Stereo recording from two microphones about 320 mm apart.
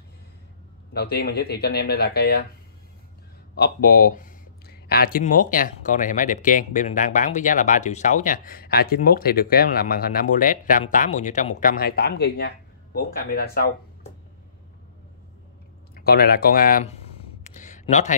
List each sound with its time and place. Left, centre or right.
0.9 s speech: left
3.5 s speech: left
15.9 s a sound: left